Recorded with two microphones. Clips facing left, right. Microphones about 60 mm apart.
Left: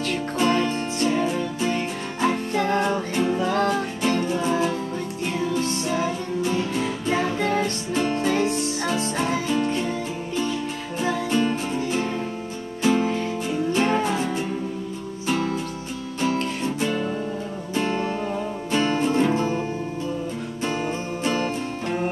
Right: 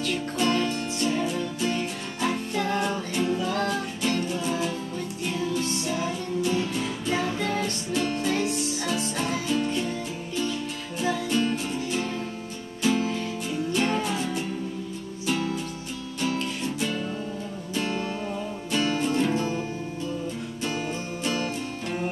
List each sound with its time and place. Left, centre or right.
0.4 s music: left
20.6 s music: left